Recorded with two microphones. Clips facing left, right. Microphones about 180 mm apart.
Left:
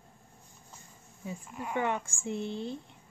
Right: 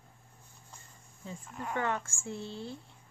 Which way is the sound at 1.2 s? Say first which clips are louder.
Left 2 dB; 10° left (ahead or behind).